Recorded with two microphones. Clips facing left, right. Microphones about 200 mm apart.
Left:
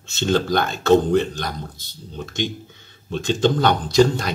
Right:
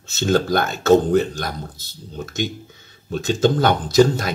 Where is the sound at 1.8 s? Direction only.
5° right (ahead or behind).